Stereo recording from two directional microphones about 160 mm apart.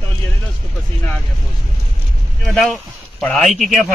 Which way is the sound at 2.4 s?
Centre (ahead or behind).